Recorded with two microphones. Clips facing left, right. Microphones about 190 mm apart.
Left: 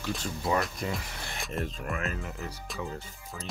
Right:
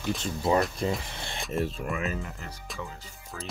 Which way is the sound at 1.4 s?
5° right (ahead or behind).